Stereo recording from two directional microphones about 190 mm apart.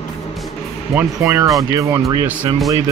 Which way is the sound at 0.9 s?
15° right (ahead or behind).